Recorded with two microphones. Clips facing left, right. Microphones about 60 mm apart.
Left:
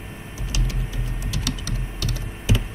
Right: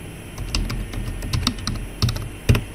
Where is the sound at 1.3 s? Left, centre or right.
Right.